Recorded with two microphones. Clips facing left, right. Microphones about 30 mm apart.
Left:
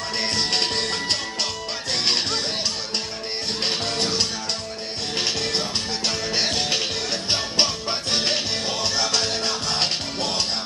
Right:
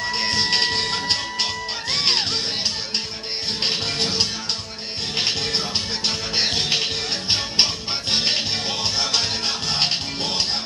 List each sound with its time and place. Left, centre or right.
0.1 s music: centre
3.6 s music: centre